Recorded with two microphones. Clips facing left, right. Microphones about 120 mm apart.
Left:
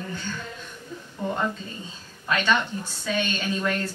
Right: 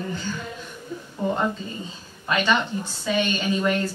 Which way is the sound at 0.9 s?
10° right (ahead or behind).